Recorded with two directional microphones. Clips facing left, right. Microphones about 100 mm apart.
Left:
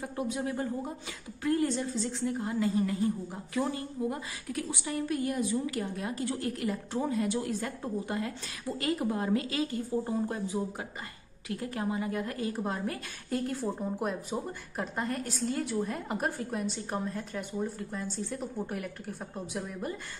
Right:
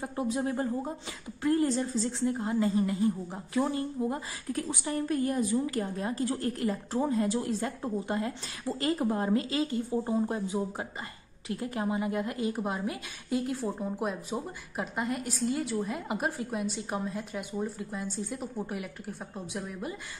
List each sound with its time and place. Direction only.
0.0 s a woman's voice: 25° right (ahead or behind)
2.2 s a woman's voice: 25° right (ahead or behind); by 20.0 s centre (ahead or behind)